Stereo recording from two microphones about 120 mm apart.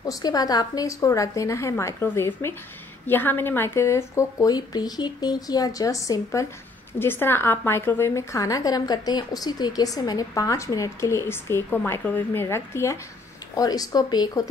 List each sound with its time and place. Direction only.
0.0 s a woman's voice: 30° left (ahead or behind)